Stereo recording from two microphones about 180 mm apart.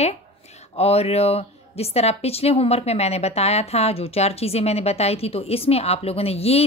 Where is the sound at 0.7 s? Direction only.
35° left (ahead or behind).